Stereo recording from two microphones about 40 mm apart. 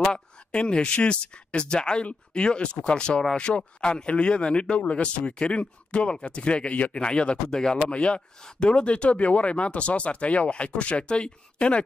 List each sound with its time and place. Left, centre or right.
0.5 s speech: left
7.9 s speech: left